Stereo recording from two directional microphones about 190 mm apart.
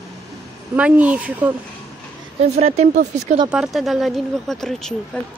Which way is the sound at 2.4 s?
35° right (ahead or behind).